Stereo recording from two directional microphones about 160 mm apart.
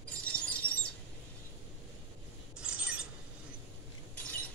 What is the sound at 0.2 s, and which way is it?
Glass, 10° left (ahead or behind).